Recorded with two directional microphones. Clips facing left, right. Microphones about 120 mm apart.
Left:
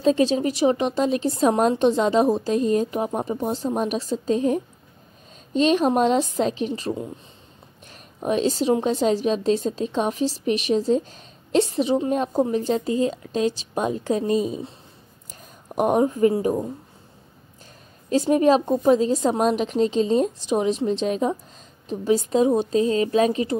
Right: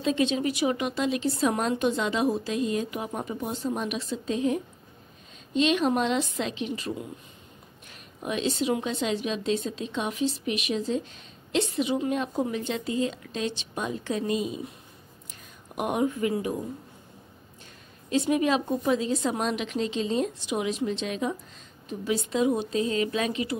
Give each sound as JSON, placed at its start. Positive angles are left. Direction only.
{"t": 0.0, "sound": "a woman's voice", "side_deg": 35}
{"t": 8.2, "sound": "a woman's voice", "side_deg": 40}
{"t": 15.7, "sound": "a woman's voice", "side_deg": 40}
{"t": 18.1, "sound": "a woman's voice", "side_deg": 40}